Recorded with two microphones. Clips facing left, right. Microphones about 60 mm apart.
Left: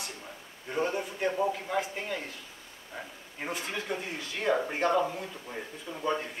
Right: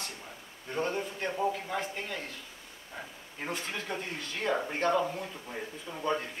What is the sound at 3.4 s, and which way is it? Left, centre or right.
A man's voice, centre.